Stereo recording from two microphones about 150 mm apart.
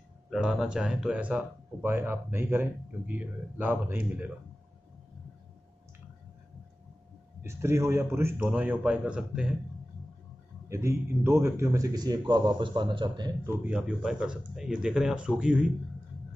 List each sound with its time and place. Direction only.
0.3 s speech: 5° right (ahead or behind)
7.4 s speech: 20° right (ahead or behind)
10.7 s a man's voice: 20° right (ahead or behind)
13.7 s speech: 5° right (ahead or behind)